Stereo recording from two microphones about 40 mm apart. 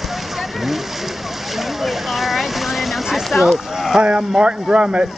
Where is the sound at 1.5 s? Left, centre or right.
Centre.